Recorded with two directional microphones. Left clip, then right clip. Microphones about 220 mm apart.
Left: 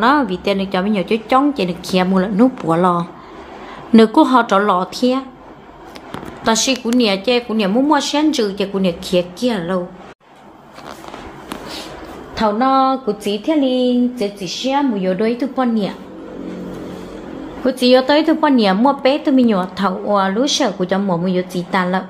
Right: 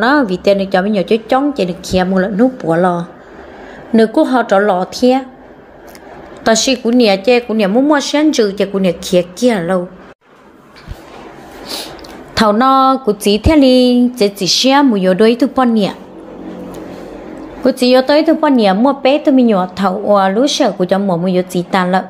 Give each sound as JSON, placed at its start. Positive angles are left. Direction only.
{"t": 0.0, "sound": "a woman's voice", "side_deg": -15}
{"t": 6.4, "sound": "a woman's voice", "side_deg": -15}
{"t": 12.4, "sound": "a sound", "side_deg": -25}
{"t": 17.6, "sound": "a woman's voice", "side_deg": -15}